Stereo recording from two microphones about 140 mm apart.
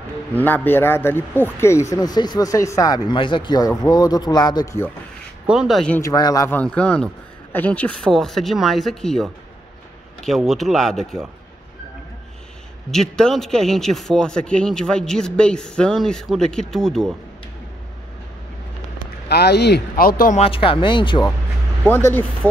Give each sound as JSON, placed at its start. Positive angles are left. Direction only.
{"t": 0.3, "sound": "speech", "side_deg": 15}
{"t": 5.5, "sound": "a man's voice", "side_deg": 0}
{"t": 5.9, "sound": "speech", "side_deg": 20}
{"t": 6.5, "sound": "a man's voice", "side_deg": 10}
{"t": 12.9, "sound": "a man's voice", "side_deg": 5}
{"t": 20.0, "sound": "speech", "side_deg": 90}
{"t": 20.3, "sound": "speech", "side_deg": 40}
{"t": 21.8, "sound": "speech", "side_deg": 15}